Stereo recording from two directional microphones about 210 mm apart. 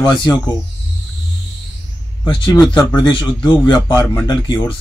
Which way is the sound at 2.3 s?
25° left (ahead or behind).